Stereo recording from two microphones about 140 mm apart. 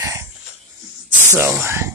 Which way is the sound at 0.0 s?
20° right (ahead or behind).